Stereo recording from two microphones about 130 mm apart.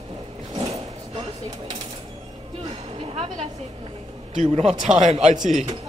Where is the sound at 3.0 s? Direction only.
50° right (ahead or behind).